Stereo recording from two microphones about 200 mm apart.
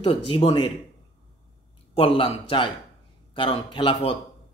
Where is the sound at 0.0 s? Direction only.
25° left (ahead or behind).